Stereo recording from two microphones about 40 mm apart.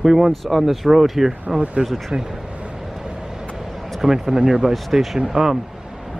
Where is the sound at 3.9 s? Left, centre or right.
Centre.